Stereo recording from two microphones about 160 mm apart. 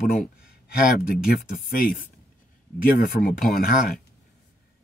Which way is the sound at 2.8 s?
60° left (ahead or behind).